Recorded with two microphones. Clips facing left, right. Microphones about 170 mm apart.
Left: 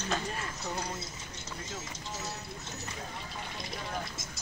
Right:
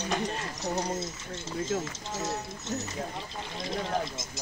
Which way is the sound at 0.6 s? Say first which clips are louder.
Right 9 dB; 45° right (ahead or behind).